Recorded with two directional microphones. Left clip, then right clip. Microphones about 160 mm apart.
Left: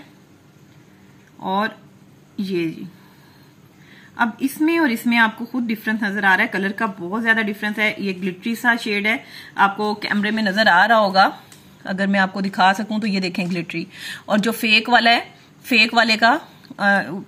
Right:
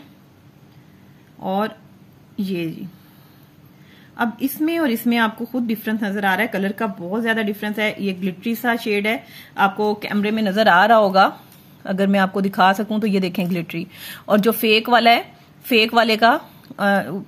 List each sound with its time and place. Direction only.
1.4 s a woman's voice: 35° right (ahead or behind)
4.2 s a woman's voice: 35° right (ahead or behind)